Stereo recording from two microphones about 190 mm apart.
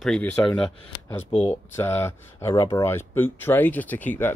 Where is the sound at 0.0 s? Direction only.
Centre (ahead or behind).